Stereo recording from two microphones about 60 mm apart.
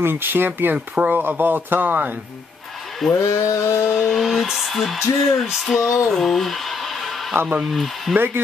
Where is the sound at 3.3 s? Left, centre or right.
Left.